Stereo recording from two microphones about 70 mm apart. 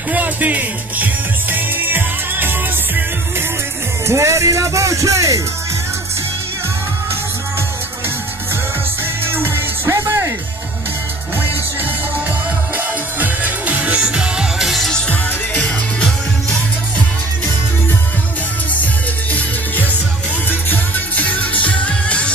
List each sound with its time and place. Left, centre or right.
0.1 s music: right
4.1 s music: right
9.2 s music: right
12.7 s music: right; by 14.9 s centre
15.0 s music: centre
20.4 s music: left